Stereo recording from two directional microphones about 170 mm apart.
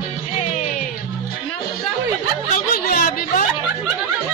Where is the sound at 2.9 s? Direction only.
50° left (ahead or behind).